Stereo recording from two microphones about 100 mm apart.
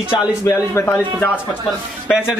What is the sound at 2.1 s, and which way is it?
Speech, 5° right (ahead or behind).